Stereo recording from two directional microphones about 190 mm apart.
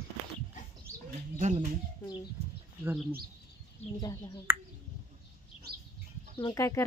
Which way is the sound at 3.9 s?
20° left (ahead or behind).